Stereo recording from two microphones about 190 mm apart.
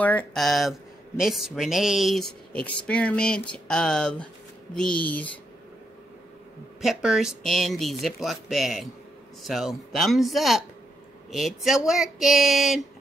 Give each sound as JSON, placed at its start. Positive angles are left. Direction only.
{"t": 0.0, "sound": "speech", "side_deg": 5}
{"t": 6.8, "sound": "speech", "side_deg": 0}